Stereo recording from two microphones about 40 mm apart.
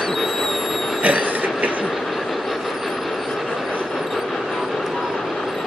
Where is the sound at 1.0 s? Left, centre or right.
Right.